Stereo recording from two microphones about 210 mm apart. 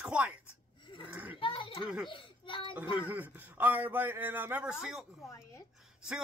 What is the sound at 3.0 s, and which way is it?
Speech, 10° right (ahead or behind).